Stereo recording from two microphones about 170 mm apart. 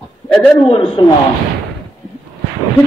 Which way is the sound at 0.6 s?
35° left (ahead or behind).